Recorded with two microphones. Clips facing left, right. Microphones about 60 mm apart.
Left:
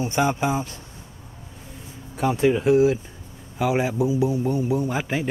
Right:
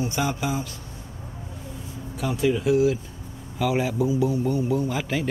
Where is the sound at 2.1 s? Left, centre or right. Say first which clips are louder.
Left 4 dB; left.